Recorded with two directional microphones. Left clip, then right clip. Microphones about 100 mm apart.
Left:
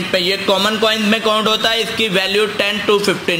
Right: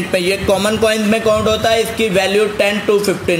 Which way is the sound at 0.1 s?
35° right (ahead or behind).